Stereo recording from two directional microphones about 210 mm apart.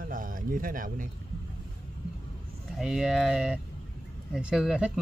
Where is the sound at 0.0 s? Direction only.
40° right (ahead or behind).